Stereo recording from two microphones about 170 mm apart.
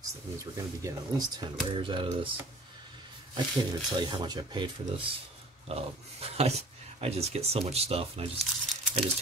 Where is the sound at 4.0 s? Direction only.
25° right (ahead or behind).